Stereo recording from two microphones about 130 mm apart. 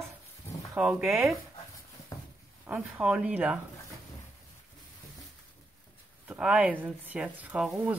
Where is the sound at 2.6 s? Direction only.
10° right (ahead or behind).